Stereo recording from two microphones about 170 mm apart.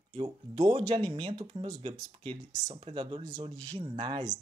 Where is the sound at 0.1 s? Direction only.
30° right (ahead or behind).